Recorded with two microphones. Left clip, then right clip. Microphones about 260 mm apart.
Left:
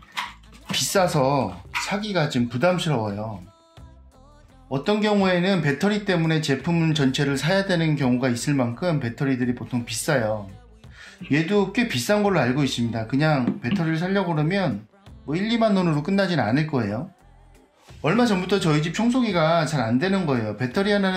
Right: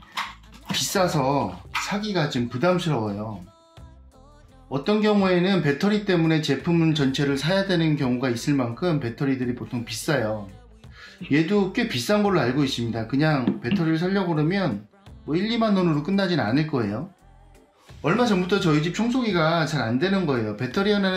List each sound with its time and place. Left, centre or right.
0.7 s speech: left
4.6 s speech: left
18.0 s speech: left